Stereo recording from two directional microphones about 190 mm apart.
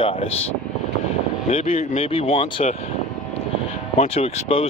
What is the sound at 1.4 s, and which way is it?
Speech, 30° left (ahead or behind).